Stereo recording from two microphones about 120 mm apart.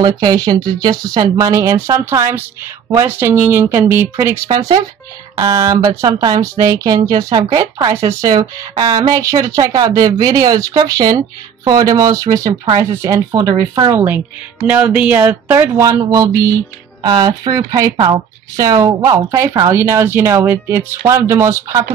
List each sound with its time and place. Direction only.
0.0 s a woman's voice: 35° right (ahead or behind); by 4.4 s 20° right (ahead or behind)
5.4 s a woman's voice: 35° right (ahead or behind)